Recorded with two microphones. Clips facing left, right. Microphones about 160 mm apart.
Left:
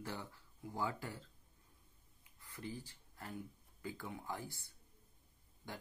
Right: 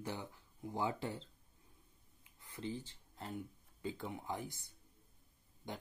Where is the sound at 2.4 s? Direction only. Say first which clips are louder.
Right 4 dB; 20° right (ahead or behind).